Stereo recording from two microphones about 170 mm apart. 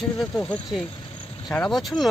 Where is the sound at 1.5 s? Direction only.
5° left (ahead or behind).